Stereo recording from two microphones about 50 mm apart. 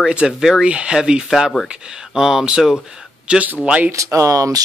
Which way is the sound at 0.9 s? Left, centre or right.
Centre.